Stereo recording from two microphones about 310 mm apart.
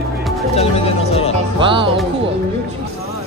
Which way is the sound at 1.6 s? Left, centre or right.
Centre.